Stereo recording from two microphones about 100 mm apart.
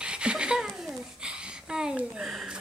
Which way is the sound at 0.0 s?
10° right (ahead or behind).